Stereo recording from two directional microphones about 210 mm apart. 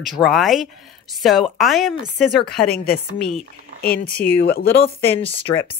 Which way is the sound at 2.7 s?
45° left (ahead or behind).